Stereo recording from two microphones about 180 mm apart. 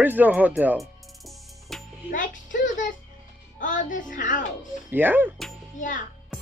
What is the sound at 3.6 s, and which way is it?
Speech, 45° left (ahead or behind).